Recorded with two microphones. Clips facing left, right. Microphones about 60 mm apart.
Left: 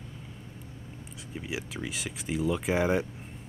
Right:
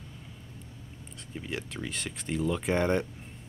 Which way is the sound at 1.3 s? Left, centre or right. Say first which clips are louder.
Left 1 dB; centre.